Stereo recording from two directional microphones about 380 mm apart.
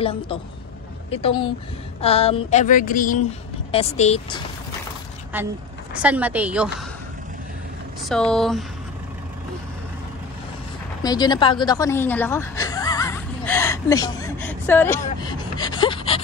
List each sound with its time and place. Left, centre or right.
0.0 s speech: centre
2.0 s speech: centre
5.3 s a woman's voice: centre
8.0 s a woman's voice: centre
11.0 s a sound: centre